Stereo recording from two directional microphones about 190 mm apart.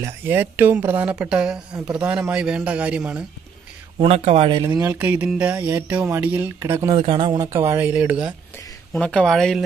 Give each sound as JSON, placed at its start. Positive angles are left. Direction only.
{"t": 0.0, "sound": "a man's voice", "side_deg": -10}
{"t": 4.0, "sound": "speech", "side_deg": -30}
{"t": 4.6, "sound": "speech", "side_deg": -15}
{"t": 7.0, "sound": "speech", "side_deg": -25}
{"t": 7.5, "sound": "speech", "side_deg": -15}
{"t": 8.9, "sound": "a man's voice", "side_deg": 5}